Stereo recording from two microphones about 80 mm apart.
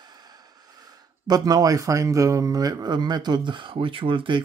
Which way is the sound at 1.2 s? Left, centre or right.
Right.